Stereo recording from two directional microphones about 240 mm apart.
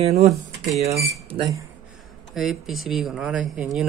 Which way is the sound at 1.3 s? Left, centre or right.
Centre.